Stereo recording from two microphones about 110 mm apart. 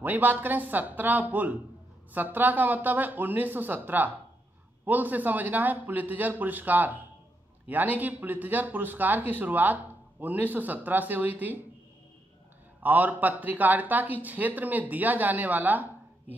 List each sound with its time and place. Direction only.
0.0 s speech: 15° right (ahead or behind)
12.8 s speech: 15° right (ahead or behind)